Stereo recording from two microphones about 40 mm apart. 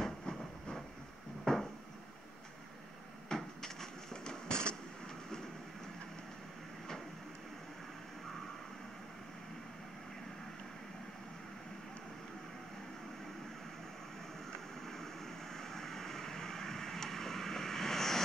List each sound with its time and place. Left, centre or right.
0.0 s train: centre
1.4 s cupboard open or close: centre
3.3 s a sound: centre
15.5 s vehicle: centre